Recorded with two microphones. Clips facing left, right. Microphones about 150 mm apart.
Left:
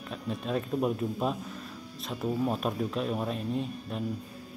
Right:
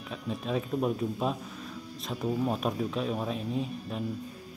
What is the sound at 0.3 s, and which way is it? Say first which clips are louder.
Speech: even; centre (ahead or behind).